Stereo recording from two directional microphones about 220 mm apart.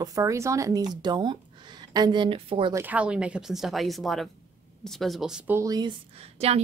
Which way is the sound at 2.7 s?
5° right (ahead or behind).